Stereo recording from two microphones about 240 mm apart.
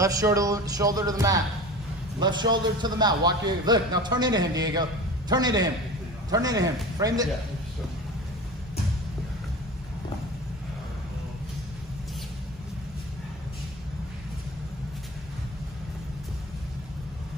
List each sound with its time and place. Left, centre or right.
0.0 s a man's voice: centre